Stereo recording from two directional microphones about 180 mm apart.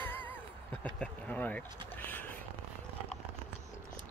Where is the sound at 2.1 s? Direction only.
10° left (ahead or behind).